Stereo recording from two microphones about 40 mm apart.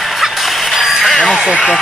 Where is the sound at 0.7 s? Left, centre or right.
Centre.